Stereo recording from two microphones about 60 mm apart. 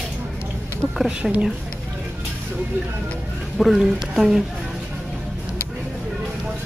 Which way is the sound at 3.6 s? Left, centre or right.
Centre.